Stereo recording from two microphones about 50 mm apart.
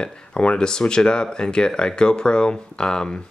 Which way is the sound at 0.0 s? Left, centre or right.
Centre.